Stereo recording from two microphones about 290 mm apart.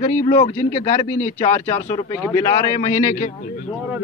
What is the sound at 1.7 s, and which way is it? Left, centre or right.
Speech, left.